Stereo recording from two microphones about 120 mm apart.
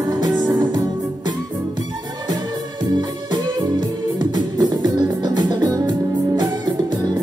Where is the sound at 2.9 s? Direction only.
35° right (ahead or behind).